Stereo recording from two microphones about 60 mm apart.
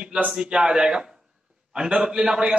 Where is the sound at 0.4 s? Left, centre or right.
Centre.